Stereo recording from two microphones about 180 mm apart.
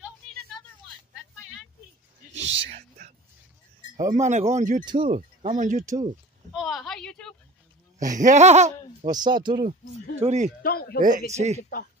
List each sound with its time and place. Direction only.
2.3 s speech: 35° right (ahead or behind)
4.1 s speech: 40° right (ahead or behind)
5.9 s speech: 20° right (ahead or behind)
6.5 s a sound: centre (ahead or behind)
8.0 s speech: 45° right (ahead or behind)
9.1 s speech: 25° right (ahead or behind)
10.2 s speech: 40° right (ahead or behind)
10.6 s speech: 55° left (ahead or behind)
11.0 s speech: 45° right (ahead or behind)